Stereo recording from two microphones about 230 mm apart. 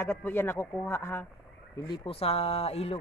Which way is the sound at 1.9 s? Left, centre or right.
Left.